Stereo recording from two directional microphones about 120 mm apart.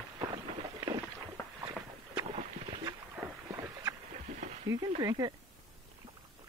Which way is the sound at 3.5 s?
30° right (ahead or behind).